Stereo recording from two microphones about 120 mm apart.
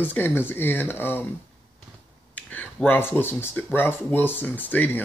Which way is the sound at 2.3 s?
15° left (ahead or behind).